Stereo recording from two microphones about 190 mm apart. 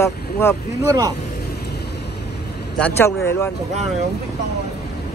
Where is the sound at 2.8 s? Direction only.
10° left (ahead or behind).